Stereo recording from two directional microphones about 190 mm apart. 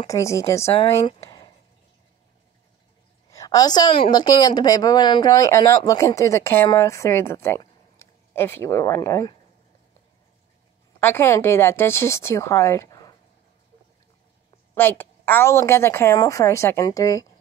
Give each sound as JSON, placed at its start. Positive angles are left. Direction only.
{"t": 0.0, "sound": "a woman's voice", "side_deg": 15}
{"t": 0.7, "sound": "speech", "side_deg": 30}
{"t": 3.3, "sound": "a sound", "side_deg": 20}
{"t": 4.1, "sound": "a woman's voice", "side_deg": 20}
{"t": 11.0, "sound": "a woman's voice", "side_deg": 10}
{"t": 14.7, "sound": "a woman's voice", "side_deg": 10}